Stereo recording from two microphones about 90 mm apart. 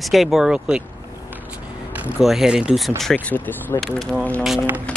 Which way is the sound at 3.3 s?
20° left (ahead or behind).